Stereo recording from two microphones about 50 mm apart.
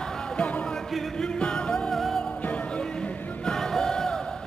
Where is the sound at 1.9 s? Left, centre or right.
Centre.